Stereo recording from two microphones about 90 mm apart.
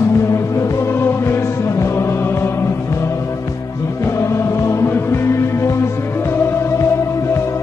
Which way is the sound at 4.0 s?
30° left (ahead or behind).